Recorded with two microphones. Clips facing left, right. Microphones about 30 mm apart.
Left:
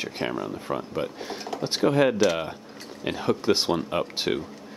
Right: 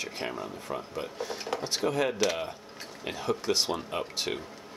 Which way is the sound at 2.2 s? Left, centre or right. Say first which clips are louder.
Left 6 dB; centre.